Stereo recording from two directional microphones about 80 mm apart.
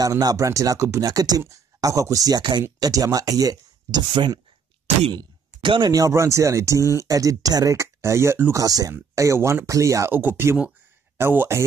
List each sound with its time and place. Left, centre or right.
0.0 s speech: right
5.1 s a sound: right
5.9 s speech: right
8.5 s speech: right
10.1 s speech: right